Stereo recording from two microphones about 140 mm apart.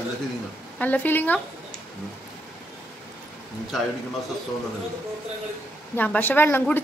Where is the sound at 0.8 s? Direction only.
10° left (ahead or behind).